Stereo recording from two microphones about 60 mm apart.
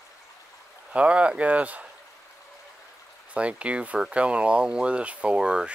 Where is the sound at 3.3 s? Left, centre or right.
Centre.